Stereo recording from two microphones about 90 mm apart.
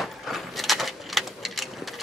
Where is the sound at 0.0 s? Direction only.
Centre (ahead or behind).